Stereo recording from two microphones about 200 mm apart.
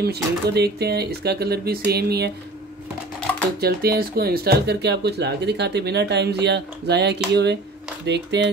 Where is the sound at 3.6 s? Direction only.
50° right (ahead or behind).